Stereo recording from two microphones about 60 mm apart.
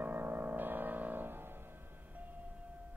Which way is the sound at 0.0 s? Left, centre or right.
Right.